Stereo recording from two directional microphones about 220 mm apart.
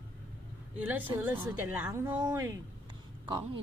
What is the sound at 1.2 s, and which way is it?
Speech, 10° right (ahead or behind).